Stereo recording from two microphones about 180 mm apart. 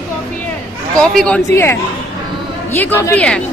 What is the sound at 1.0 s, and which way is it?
Speech, 5° left (ahead or behind).